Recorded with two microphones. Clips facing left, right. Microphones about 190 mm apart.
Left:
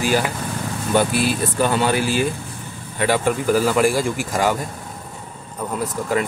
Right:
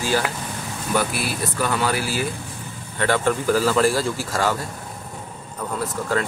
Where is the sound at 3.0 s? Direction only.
15° left (ahead or behind).